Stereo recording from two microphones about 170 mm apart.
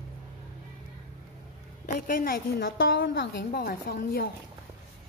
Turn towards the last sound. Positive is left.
turn(degrees=60)  # may be behind; listen again after turning